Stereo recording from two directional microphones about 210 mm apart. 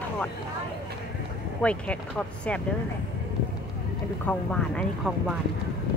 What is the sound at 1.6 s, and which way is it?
Speech, 5° left (ahead or behind).